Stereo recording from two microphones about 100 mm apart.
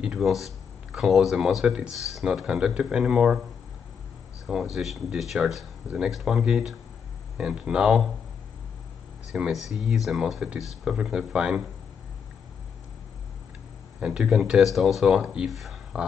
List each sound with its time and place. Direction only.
0.0 s speech: 5° right (ahead or behind)
4.5 s speech: 5° right (ahead or behind)
9.3 s speech: 5° right (ahead or behind)
13.9 s speech: 10° right (ahead or behind)